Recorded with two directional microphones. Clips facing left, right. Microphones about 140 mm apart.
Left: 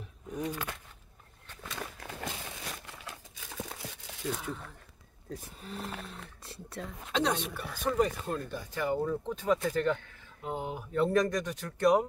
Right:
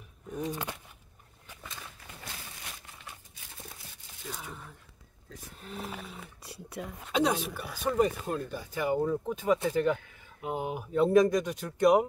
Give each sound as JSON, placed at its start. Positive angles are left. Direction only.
{"t": 0.4, "sound": "speech", "side_deg": -25}
{"t": 1.7, "sound": "a sound", "side_deg": 80}
{"t": 2.7, "sound": "crumpling", "side_deg": 90}
{"t": 5.6, "sound": "speech", "side_deg": 0}